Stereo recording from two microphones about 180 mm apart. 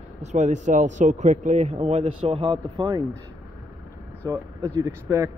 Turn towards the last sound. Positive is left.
turn(degrees=-15)  # may be behind; listen again after turning